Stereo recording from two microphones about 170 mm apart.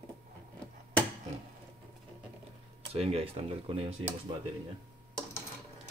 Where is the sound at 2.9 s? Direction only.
35° right (ahead or behind).